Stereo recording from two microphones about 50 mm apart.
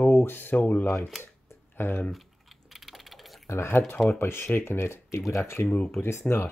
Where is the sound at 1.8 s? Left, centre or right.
Left.